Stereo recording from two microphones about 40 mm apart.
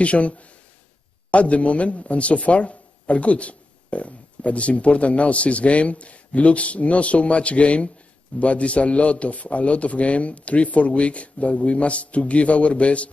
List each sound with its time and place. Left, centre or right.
0.0 s speech: left